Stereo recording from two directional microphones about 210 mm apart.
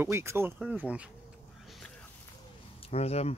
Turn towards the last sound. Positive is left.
turn(degrees=30)  # may be behind; listen again after turning